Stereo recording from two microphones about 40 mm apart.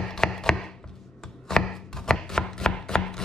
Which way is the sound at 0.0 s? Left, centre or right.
Centre.